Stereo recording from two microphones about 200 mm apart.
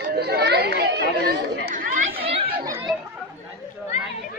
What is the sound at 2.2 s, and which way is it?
Chatter, 30° right (ahead or behind).